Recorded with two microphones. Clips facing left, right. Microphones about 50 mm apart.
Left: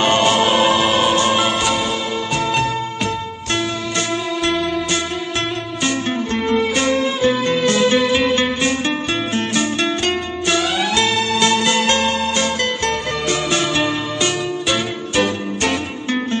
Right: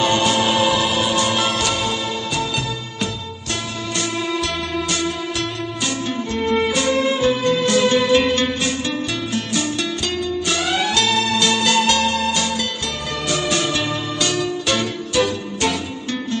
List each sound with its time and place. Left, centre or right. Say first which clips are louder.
0.0 s music: left 3 dB; left
5.9 s music: left 5 dB; left
8.1 s music: even; centre
8.5 s music: left 3 dB; left
15.1 s music: left 1 dB; left